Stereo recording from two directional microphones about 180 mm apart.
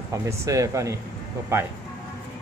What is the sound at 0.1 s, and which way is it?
Speech, 20° right (ahead or behind).